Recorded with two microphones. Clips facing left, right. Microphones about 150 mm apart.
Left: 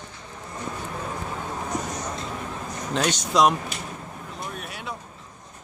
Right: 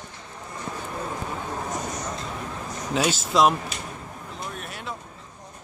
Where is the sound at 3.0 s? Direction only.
5° right (ahead or behind).